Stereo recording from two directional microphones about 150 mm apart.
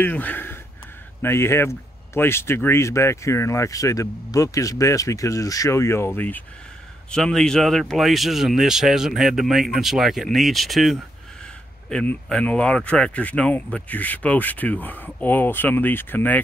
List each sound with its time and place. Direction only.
0.0 s speech: 10° left (ahead or behind)